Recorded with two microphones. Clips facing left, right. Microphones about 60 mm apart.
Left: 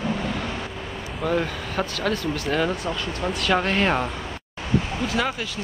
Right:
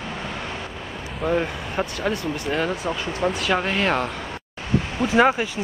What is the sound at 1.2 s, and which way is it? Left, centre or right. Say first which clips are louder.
Speech: right 1 dB; centre.